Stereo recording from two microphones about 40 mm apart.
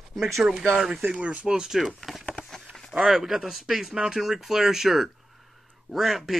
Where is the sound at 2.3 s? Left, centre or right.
Centre.